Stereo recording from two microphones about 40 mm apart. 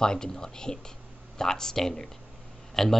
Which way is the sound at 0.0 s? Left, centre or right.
Centre.